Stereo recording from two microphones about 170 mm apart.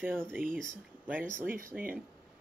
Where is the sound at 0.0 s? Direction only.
10° right (ahead or behind).